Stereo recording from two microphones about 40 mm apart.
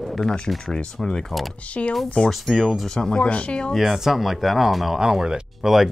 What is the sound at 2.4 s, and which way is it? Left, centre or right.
Speech, centre.